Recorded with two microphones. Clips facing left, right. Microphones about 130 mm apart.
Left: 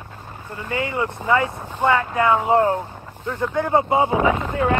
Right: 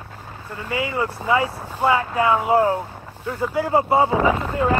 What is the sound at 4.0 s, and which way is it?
Speech, 20° left (ahead or behind).